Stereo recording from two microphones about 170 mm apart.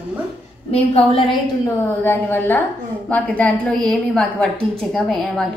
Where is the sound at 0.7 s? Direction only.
35° left (ahead or behind).